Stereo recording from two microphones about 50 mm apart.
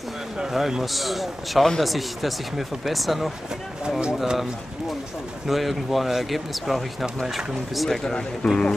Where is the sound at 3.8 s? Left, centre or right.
Centre.